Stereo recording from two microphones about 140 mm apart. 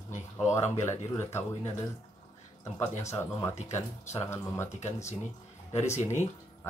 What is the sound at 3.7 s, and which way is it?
Speech, 20° left (ahead or behind).